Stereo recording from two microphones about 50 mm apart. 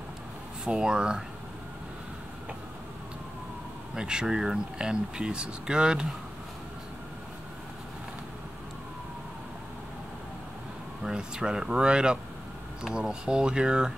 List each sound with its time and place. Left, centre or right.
0.7 s speech: centre
3.9 s speech: centre
11.1 s speech: centre